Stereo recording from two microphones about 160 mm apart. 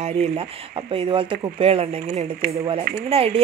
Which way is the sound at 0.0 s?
40° right (ahead or behind).